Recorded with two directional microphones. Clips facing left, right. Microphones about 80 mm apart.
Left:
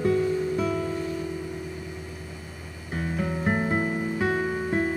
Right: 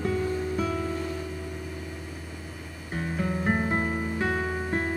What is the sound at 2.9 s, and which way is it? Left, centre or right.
Music, centre.